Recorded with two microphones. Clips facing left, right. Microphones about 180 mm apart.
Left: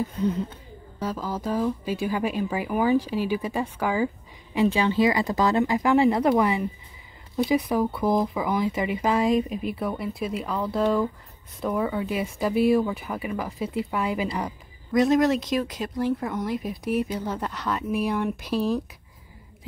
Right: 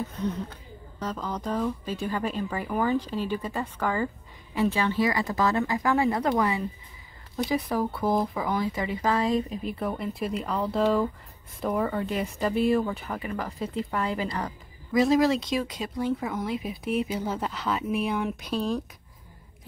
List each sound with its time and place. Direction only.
0.9 s speech: 5° left (ahead or behind)
14.9 s speech: centre (ahead or behind)